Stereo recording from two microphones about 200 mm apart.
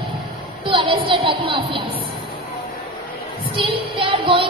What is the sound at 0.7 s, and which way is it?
Speech, 25° right (ahead or behind).